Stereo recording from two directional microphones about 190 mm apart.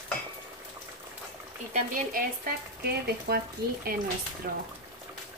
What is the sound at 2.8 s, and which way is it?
Speech, 55° right (ahead or behind).